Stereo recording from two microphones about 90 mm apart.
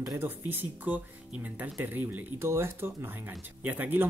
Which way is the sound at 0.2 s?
20° right (ahead or behind).